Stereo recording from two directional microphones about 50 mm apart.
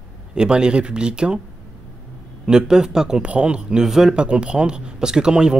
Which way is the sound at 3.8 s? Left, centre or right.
Centre.